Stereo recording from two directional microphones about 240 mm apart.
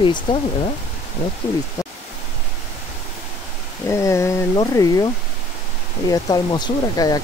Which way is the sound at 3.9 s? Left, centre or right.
Centre.